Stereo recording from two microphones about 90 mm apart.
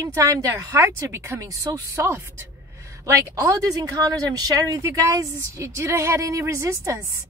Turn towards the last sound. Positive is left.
turn(degrees=-35)  # may be behind; listen again after turning